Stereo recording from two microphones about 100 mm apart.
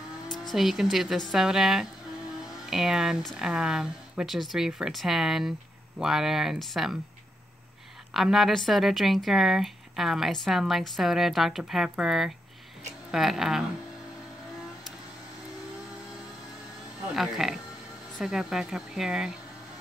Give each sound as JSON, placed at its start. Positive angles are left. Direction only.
{"t": 0.3, "sound": "a woman's voice", "side_deg": 0}
{"t": 8.1, "sound": "a woman's voice", "side_deg": 0}
{"t": 17.1, "sound": "a woman's voice", "side_deg": -5}